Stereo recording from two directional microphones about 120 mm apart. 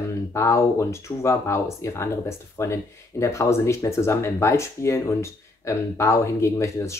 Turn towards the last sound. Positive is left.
turn(degrees=25)  # may be behind; listen again after turning